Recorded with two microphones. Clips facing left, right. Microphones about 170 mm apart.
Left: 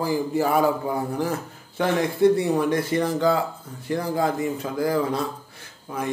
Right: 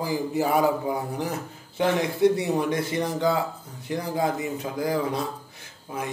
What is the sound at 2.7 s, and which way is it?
Speech, 20° right (ahead or behind).